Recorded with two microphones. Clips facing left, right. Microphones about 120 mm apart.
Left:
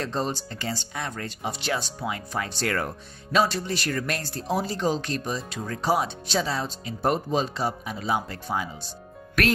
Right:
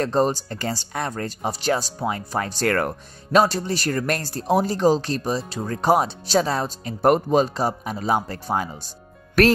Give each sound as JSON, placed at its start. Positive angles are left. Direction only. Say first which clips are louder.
{"t": 0.0, "sound": "speech", "louder": "right 8 dB", "side_deg": -45}
{"t": 5.8, "sound": "speech", "louder": "right 5 dB", "side_deg": -50}
{"t": 7.4, "sound": "speech", "louder": "right 4 dB", "side_deg": -40}